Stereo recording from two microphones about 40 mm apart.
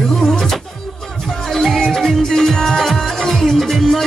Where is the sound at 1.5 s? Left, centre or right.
Centre.